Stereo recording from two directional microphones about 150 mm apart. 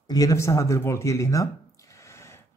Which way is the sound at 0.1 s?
20° left (ahead or behind).